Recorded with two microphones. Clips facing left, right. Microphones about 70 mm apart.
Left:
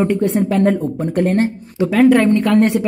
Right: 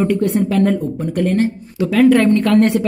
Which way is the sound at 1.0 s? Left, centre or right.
Left.